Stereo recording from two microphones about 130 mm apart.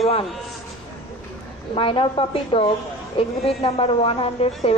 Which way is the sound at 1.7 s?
45° left (ahead or behind).